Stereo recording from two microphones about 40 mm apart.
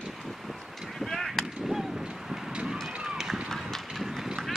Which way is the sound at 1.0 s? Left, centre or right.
Centre.